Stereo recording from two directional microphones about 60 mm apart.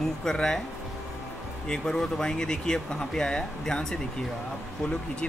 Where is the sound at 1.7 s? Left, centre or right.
Centre.